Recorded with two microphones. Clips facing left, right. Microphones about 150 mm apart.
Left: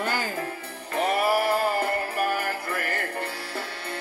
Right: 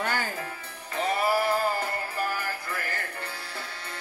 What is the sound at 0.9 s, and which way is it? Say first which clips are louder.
Music: left 3 dB; 60° left (ahead or behind).